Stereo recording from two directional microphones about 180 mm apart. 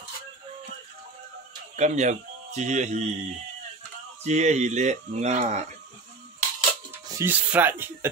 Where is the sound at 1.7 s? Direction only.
40° right (ahead or behind).